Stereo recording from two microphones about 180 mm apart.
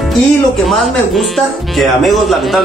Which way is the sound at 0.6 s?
Centre (ahead or behind).